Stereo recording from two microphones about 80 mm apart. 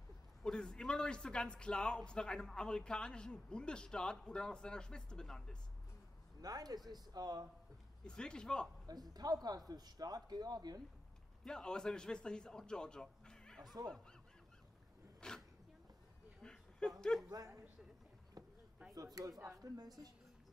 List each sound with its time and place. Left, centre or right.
0.4 s a man's voice: centre
6.4 s speech: right
8.0 s a man's voice: centre
8.8 s speech: right
11.4 s a man's voice: centre
15.1 s a sound: centre
17.1 s a man's voice: centre
19.1 s speech: right